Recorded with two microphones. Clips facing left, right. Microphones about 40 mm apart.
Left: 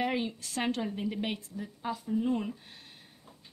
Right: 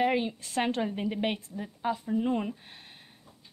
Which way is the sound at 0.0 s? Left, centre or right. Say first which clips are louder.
Right 4 dB; centre.